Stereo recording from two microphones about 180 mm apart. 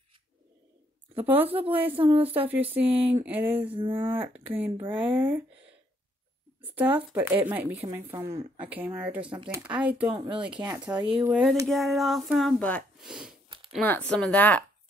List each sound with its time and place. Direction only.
1.1 s speech: 10° right (ahead or behind)
6.7 s speech: 10° right (ahead or behind)
10.0 s speech: 25° right (ahead or behind)
10.6 s speech: 10° right (ahead or behind); by 14.6 s 10° left (ahead or behind)